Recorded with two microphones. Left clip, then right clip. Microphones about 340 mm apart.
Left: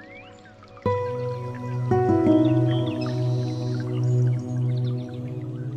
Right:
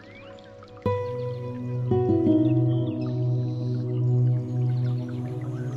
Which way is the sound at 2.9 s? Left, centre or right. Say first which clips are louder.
Left 2 dB; left.